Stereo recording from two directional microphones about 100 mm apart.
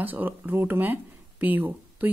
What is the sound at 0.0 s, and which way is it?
Speech, 15° right (ahead or behind).